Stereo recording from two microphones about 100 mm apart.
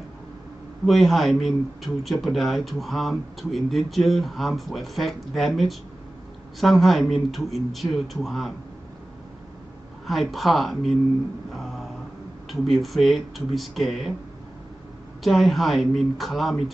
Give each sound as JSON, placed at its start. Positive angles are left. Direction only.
{"t": 0.8, "sound": "speech", "side_deg": 0}
{"t": 10.0, "sound": "speech", "side_deg": 0}
{"t": 11.5, "sound": "a sound", "side_deg": 0}
{"t": 12.4, "sound": "speech", "side_deg": 0}
{"t": 15.2, "sound": "speech", "side_deg": 0}